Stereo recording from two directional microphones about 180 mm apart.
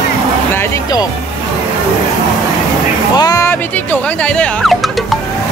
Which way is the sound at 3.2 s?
20° left (ahead or behind).